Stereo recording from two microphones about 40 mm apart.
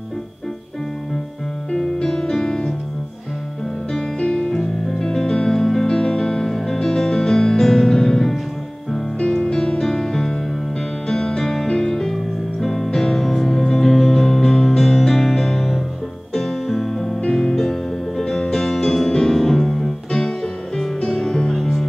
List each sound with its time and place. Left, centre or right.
2.0 s music: centre
4.2 s music: left
9.2 s music: left
12.0 s music: centre
21.5 s music: centre